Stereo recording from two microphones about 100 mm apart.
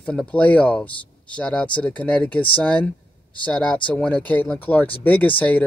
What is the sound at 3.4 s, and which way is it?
Speech, 10° left (ahead or behind).